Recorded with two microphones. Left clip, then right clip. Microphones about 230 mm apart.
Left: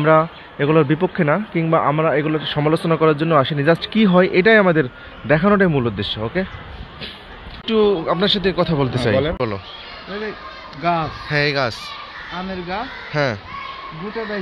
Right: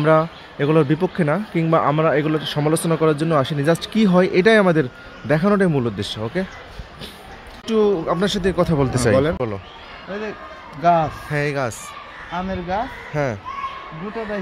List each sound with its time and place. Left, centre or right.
0.0 s speech: centre
7.6 s speech: centre
9.4 s speech: centre
10.8 s speech: right
11.2 s speech: centre
12.4 s speech: right
13.1 s speech: centre